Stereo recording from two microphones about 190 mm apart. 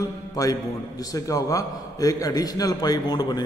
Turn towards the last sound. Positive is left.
turn(degrees=20)  # may be behind; listen again after turning